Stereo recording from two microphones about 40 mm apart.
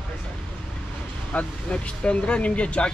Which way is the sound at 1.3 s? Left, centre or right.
Left.